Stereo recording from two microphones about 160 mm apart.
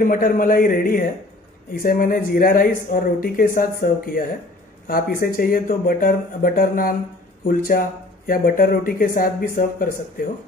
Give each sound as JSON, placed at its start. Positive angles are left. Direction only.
{"t": 0.0, "sound": "speech", "side_deg": 60}